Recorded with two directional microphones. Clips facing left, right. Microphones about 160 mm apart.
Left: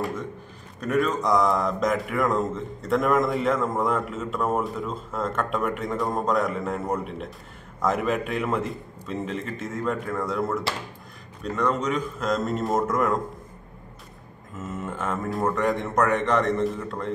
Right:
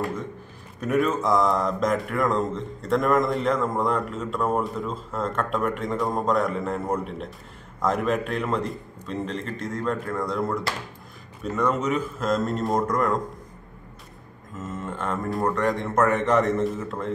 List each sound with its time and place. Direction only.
0.0 s a sound: centre (ahead or behind)
0.7 s speech: 5° right (ahead or behind)
14.6 s speech: 5° left (ahead or behind)